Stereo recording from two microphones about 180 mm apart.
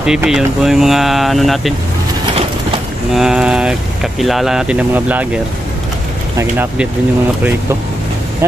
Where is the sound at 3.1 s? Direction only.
5° right (ahead or behind).